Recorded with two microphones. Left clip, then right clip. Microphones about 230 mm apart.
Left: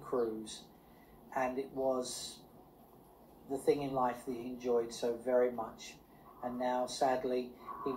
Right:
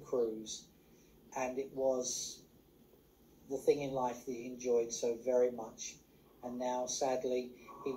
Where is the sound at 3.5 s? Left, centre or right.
Left.